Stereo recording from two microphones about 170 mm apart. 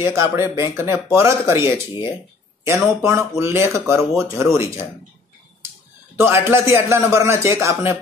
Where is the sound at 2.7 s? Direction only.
15° right (ahead or behind).